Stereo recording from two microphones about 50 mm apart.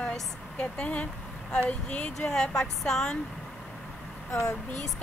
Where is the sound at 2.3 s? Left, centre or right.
Centre.